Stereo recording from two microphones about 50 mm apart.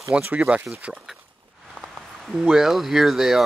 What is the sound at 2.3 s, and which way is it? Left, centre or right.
Speech, centre.